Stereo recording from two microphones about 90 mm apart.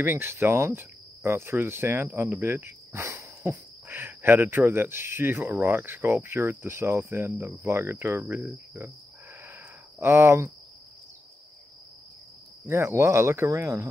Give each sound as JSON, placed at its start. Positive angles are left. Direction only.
{"t": 0.0, "sound": "cricket", "side_deg": -25}
{"t": 8.5, "sound": "insect", "side_deg": -20}
{"t": 9.4, "sound": "a sound", "side_deg": -25}
{"t": 12.6, "sound": "speech", "side_deg": -30}